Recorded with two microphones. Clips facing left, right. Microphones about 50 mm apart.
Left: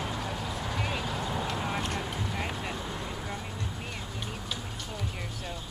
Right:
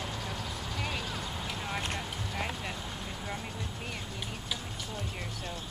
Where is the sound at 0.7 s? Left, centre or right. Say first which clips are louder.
Left 2 dB; centre.